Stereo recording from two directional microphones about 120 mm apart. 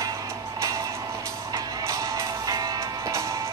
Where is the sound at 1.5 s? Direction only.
25° right (ahead or behind).